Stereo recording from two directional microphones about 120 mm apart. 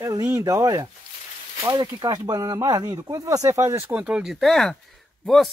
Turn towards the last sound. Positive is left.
turn(degrees=0)  # may be behind; listen again after turning